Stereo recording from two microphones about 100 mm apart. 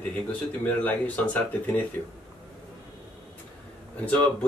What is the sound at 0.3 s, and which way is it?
Speech, 15° left (ahead or behind).